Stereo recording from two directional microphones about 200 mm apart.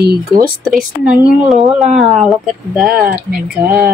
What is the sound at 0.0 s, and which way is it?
Speech, 50° right (ahead or behind).